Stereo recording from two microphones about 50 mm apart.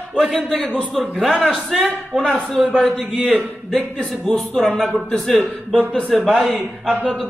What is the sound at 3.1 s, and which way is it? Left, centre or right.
Speech, centre.